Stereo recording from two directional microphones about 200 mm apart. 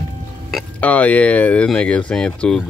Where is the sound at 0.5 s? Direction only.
5° left (ahead or behind).